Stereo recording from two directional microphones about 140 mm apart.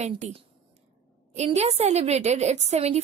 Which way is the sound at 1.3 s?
50° right (ahead or behind).